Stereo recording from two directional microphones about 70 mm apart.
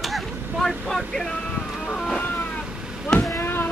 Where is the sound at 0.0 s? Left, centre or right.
Centre.